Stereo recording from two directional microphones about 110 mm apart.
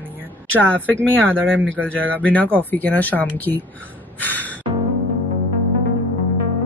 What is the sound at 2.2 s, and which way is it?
Speech, 15° left (ahead or behind).